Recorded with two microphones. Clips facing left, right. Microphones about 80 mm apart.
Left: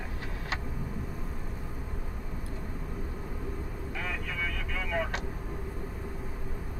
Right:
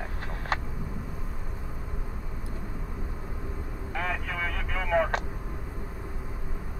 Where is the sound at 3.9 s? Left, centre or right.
Right.